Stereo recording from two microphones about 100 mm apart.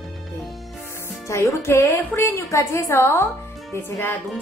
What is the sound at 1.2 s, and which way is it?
A woman's voice, 30° left (ahead or behind).